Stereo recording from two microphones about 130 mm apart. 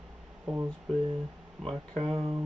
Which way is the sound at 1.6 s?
5° left (ahead or behind).